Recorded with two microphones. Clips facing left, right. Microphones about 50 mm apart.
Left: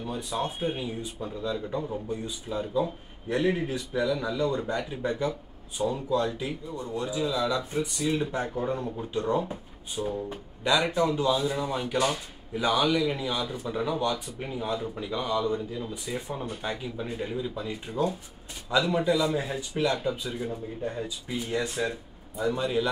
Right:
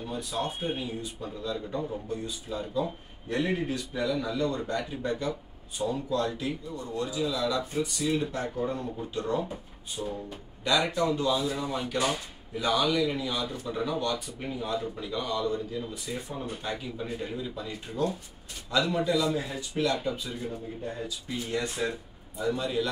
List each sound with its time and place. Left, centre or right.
0.0 s speech: centre
3.3 s speech: centre
3.6 s speech: centre
12.5 s speech: centre
22.4 s speech: centre